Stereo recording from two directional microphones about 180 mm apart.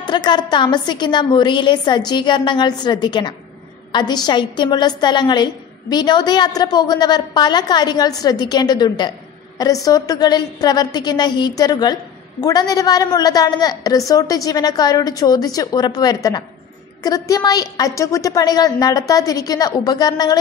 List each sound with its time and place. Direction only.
0.0 s a woman's voice: 25° left (ahead or behind)